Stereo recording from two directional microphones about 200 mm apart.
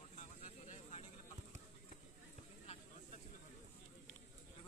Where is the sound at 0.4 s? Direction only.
30° left (ahead or behind).